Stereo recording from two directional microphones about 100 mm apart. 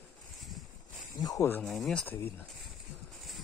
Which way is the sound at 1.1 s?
40° left (ahead or behind).